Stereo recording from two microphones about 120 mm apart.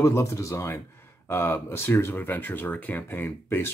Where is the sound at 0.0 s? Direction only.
25° left (ahead or behind).